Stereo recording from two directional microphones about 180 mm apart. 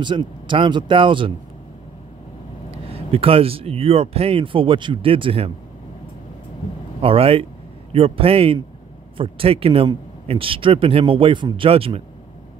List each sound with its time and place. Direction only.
0.0 s speech: 25° right (ahead or behind)
2.7 s speech: 35° right (ahead or behind)
7.0 s speech: 30° right (ahead or behind)